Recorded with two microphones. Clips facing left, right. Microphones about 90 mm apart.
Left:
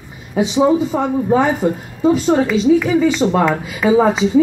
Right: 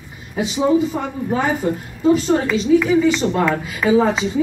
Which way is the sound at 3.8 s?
20° left (ahead or behind).